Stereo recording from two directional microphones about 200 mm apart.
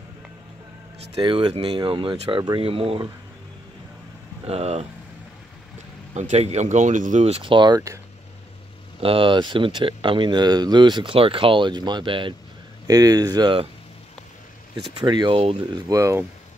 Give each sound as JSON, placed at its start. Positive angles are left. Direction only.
{"t": 1.1, "sound": "speech", "side_deg": -25}
{"t": 4.5, "sound": "speech", "side_deg": -30}
{"t": 6.1, "sound": "speech", "side_deg": -35}
{"t": 9.0, "sound": "speech", "side_deg": -25}
{"t": 15.0, "sound": "speech", "side_deg": -20}
{"t": 15.7, "sound": "speech", "side_deg": -15}